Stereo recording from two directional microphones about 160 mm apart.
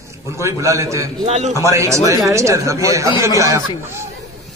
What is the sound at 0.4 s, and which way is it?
Speech, 20° right (ahead or behind).